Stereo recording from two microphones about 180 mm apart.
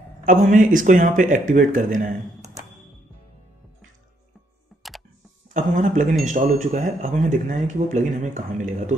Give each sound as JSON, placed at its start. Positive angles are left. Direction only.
{"t": 0.2, "sound": "speech", "side_deg": -45}
{"t": 5.5, "sound": "speech", "side_deg": -45}